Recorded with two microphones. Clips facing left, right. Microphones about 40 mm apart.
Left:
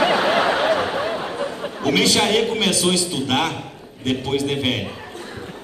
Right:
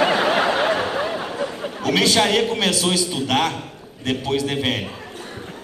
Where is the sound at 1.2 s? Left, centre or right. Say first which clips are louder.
Even; left.